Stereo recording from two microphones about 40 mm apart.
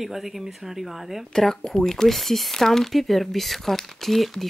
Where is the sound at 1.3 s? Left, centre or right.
Centre.